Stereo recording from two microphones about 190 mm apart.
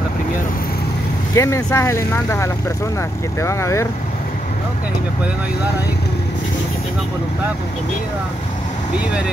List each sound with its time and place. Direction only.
1.3 s speech: 15° left (ahead or behind)